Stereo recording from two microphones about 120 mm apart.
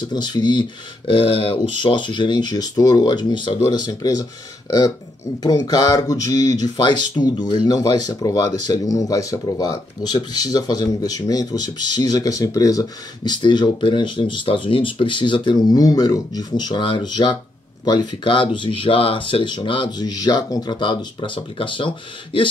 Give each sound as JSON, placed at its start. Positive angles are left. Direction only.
{"t": 0.1, "sound": "speech", "side_deg": 35}